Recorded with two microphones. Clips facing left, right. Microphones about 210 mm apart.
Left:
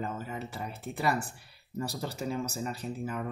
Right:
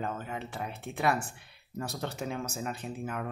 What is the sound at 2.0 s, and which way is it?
Speech, centre (ahead or behind).